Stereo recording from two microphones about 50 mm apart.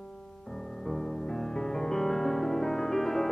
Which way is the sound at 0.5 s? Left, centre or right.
Centre.